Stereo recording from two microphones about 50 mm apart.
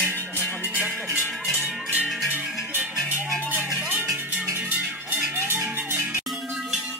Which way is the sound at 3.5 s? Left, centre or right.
Right.